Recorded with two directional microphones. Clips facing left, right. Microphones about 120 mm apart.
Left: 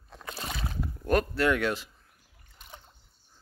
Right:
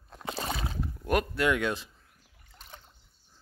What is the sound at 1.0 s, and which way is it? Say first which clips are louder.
Speech: left 2 dB; 15° right (ahead or behind).